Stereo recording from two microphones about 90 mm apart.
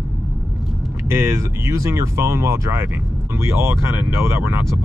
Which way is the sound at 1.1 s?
30° right (ahead or behind).